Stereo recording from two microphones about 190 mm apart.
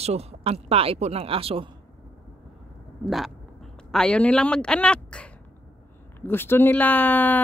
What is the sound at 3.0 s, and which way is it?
Speech, centre (ahead or behind).